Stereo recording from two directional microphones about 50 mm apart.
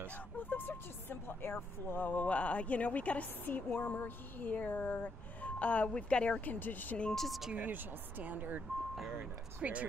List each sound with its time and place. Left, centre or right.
0.4 s speech: left
3.4 s speech: left
5.6 s speech: left
6.4 s speech: left
7.1 s speech: centre
7.5 s speech: right